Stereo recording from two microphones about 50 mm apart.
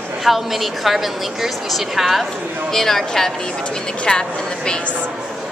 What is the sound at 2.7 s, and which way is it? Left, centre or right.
Speech, centre.